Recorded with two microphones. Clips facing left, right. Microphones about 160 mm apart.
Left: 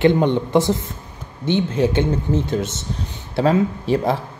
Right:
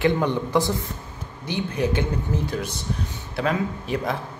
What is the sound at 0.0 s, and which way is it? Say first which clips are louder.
Speech: left 6 dB; 25° left (ahead or behind).